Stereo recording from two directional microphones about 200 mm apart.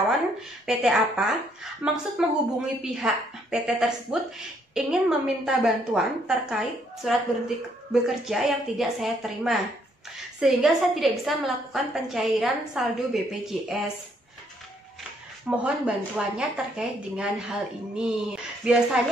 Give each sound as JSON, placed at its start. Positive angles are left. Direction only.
{"t": 0.7, "sound": "a woman's voice", "side_deg": 0}
{"t": 5.4, "sound": "a woman's voice", "side_deg": -5}
{"t": 15.5, "sound": "a woman's voice", "side_deg": -5}